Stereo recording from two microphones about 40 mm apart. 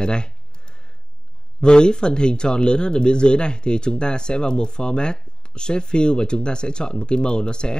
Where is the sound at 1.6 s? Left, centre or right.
Left.